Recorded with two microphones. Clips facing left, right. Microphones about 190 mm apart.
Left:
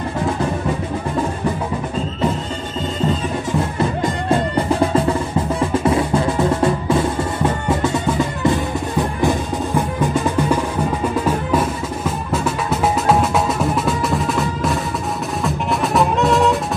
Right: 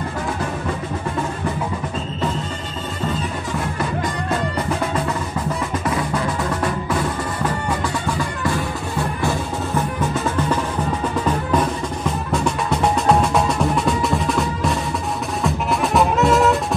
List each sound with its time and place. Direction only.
4.0 s music: 30° left (ahead or behind)
5.6 s percussion: 30° left (ahead or behind)
11.2 s drum: 5° left (ahead or behind)
15.4 s music: centre (ahead or behind)